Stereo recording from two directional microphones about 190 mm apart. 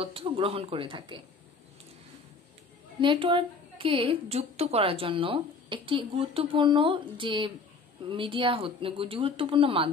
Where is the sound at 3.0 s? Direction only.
25° right (ahead or behind).